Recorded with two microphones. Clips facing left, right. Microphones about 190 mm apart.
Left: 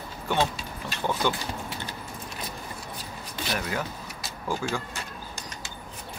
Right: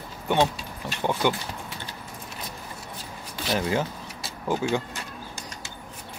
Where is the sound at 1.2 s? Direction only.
15° right (ahead or behind).